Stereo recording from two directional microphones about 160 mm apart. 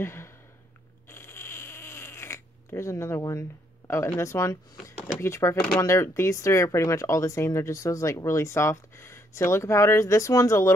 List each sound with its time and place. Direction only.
0.0 s a sound: 15° left (ahead or behind)
1.1 s cat: 15° left (ahead or behind)
5.8 s speech: 20° left (ahead or behind)